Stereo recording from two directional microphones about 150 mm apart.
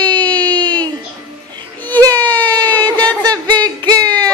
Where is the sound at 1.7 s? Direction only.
10° left (ahead or behind).